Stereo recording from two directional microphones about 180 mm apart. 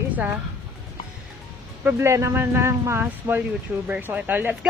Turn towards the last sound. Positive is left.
turn(degrees=-10)  # may be behind; listen again after turning